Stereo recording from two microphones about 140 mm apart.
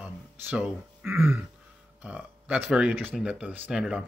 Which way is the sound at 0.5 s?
5° right (ahead or behind).